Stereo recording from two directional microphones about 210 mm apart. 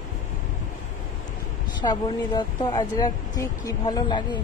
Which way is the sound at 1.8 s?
20° left (ahead or behind).